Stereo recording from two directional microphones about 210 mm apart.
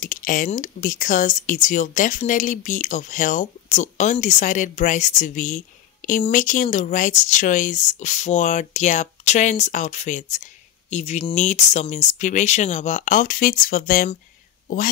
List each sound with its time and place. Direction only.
0.0 s speech: 40° left (ahead or behind)